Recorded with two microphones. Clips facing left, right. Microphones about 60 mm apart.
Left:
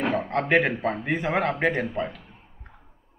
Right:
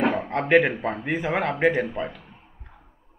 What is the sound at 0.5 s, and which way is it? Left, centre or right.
A man's voice, centre.